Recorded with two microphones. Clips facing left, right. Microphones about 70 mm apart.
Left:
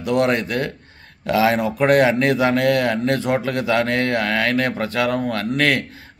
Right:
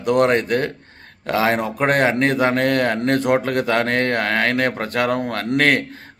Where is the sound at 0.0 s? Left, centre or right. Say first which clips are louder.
Right 2 dB; right.